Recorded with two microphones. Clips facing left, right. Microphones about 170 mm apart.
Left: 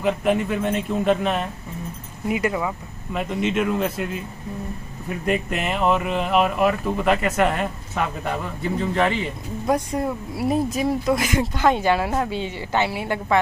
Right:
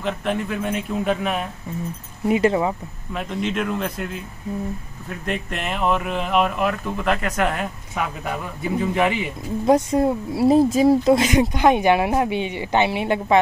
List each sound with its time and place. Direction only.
0.0 s speech: 5° left (ahead or behind)
2.2 s speech: 30° right (ahead or behind)
3.1 s speech: centre (ahead or behind)
9.7 s speech: 25° right (ahead or behind)